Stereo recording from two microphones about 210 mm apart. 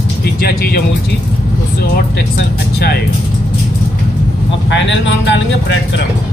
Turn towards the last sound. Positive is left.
turn(degrees=60)  # may be behind; listen again after turning